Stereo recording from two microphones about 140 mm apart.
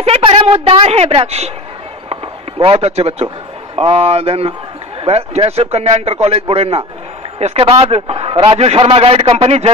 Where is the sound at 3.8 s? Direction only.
45° right (ahead or behind).